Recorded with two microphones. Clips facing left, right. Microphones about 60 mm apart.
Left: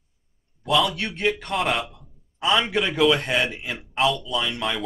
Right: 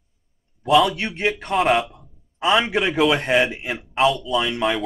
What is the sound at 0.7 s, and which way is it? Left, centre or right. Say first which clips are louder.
Speech: right 5 dB; centre.